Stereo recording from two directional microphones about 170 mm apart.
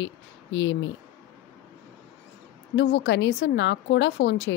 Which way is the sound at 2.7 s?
90° left.